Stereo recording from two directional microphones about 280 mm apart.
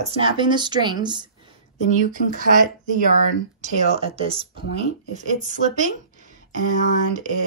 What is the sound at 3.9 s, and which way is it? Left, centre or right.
Speech, right.